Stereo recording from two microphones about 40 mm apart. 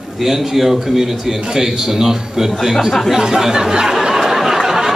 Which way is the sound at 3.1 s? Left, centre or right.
Centre.